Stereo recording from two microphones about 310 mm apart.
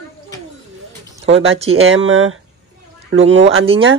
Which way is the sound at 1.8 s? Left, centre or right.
Right.